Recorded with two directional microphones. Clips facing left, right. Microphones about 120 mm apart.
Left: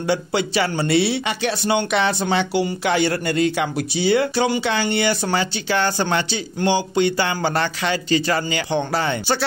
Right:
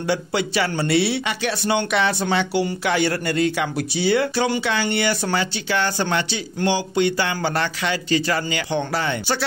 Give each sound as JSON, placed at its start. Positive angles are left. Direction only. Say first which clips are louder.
{"t": 0.0, "sound": "speech", "louder": "left 1 dB", "side_deg": 25}